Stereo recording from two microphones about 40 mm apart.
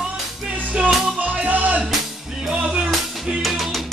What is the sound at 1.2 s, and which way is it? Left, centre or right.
Music, right.